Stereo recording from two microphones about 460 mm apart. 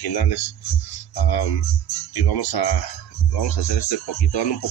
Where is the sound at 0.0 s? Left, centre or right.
Left.